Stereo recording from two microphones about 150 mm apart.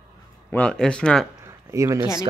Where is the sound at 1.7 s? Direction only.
20° right (ahead or behind).